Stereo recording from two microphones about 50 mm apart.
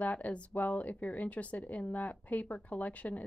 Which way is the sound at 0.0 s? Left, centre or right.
Left.